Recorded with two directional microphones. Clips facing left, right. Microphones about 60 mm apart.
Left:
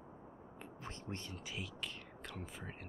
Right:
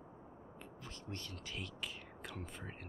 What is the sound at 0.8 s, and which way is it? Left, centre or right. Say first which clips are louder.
Speech: left 2 dB; left.